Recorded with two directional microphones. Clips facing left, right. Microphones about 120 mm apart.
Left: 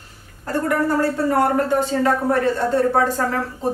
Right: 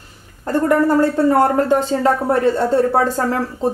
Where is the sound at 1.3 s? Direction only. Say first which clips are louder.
Right 4 dB; 30° right (ahead or behind).